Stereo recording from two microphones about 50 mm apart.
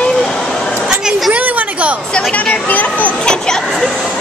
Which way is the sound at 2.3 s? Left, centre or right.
Left.